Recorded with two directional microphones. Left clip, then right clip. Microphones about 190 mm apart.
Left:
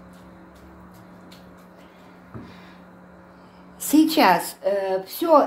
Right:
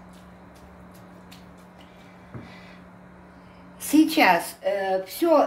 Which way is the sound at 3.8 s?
25° left (ahead or behind).